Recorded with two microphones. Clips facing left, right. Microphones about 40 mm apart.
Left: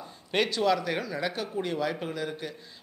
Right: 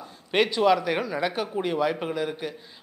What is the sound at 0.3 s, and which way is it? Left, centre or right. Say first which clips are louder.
Speech: right 5 dB; centre.